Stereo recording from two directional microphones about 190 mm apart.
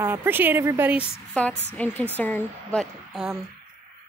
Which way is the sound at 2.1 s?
10° left (ahead or behind).